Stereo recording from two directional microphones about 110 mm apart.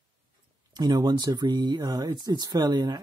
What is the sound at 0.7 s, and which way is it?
Speech, 40° right (ahead or behind).